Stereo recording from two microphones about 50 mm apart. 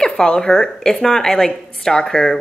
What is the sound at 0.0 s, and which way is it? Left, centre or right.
A woman's voice, centre.